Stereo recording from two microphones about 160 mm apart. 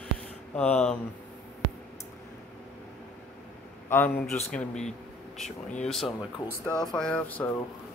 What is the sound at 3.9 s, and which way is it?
Speech, 15° left (ahead or behind).